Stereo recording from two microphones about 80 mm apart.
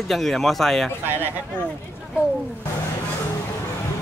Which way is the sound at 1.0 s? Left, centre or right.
Right.